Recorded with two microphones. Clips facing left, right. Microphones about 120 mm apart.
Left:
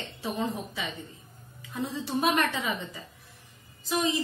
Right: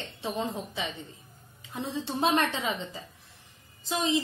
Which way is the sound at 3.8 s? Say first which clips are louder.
Left 2 dB; 25° right (ahead or behind).